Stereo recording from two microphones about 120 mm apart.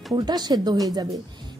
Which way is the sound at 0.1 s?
35° right (ahead or behind).